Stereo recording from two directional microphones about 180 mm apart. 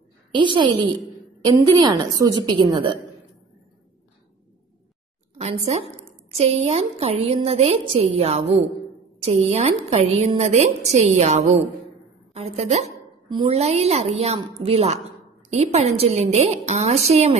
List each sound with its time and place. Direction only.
0.3 s a woman's voice: 25° right (ahead or behind)
5.4 s a woman's voice: 35° right (ahead or behind)